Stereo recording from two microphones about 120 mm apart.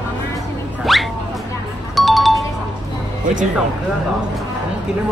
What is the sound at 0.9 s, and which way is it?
Music, centre (ahead or behind).